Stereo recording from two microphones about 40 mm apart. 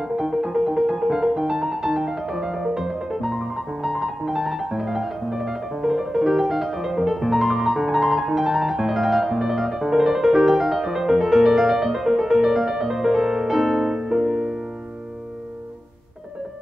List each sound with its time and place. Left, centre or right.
0.0 s music: centre
3.1 s piano: centre